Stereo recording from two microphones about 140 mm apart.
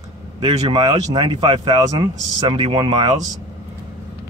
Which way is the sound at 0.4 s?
35° right (ahead or behind).